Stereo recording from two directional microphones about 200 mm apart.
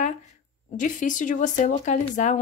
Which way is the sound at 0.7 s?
40° left (ahead or behind).